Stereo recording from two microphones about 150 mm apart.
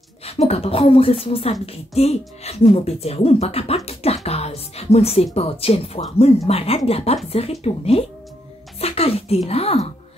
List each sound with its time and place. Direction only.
0.2 s a woman's voice: 45° left (ahead or behind)
8.7 s music: 40° left (ahead or behind)
9.5 s speech: 40° left (ahead or behind)